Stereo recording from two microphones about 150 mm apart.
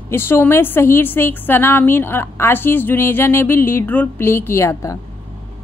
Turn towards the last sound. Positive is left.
turn(degrees=20)  # may be behind; listen again after turning